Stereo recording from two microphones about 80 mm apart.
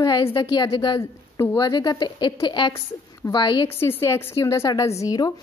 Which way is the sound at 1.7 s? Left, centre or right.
Left.